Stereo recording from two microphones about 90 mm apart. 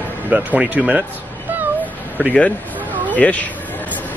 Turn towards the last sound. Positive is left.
turn(degrees=15)  # may be behind; listen again after turning